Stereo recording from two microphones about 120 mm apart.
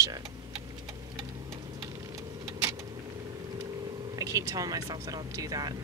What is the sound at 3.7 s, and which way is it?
Telephone, 40° right (ahead or behind).